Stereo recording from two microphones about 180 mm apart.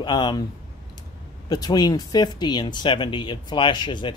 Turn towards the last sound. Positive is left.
turn(degrees=25)  # may be behind; listen again after turning